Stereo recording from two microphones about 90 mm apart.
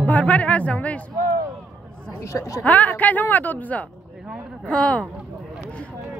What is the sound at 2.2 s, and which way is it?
Speech, 35° left (ahead or behind).